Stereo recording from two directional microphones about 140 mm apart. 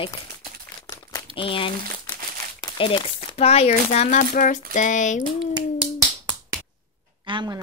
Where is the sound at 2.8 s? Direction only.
40° left (ahead or behind); by 5.2 s 65° left (ahead or behind).